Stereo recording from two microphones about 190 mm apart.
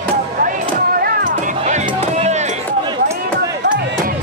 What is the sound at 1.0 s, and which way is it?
Music, 45° right (ahead or behind).